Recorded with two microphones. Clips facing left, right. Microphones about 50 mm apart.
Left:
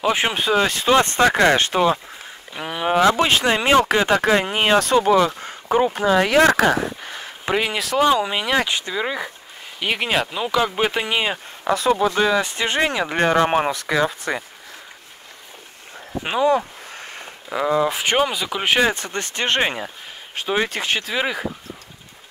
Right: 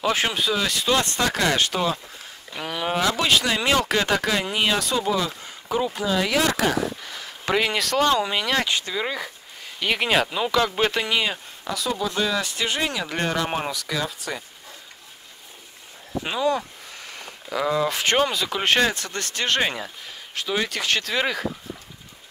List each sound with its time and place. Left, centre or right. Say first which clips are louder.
0.0 s speech: left 3 dB; centre
0.3 s speech: left 5 dB; left
2.5 s speech: left 5 dB; centre
3.1 s speech: left 4 dB; left
7.4 s speech: left 1 dB; centre
11.6 s speech: left 8 dB; left
12.2 s speech: left 5 dB; left
16.3 s speech: left 5 dB; left
16.9 s a sound: left 3 dB; left
17.5 s speech: left 3 dB; centre
18.9 s speech: left 4 dB; left
20.9 s speech: left 1 dB; centre